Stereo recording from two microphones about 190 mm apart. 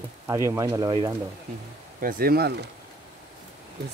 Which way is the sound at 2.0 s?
50° right (ahead or behind).